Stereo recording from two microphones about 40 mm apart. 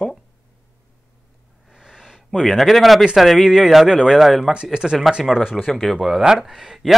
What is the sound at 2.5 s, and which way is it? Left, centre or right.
Speech, centre.